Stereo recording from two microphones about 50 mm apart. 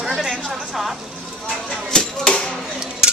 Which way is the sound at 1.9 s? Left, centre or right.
Centre.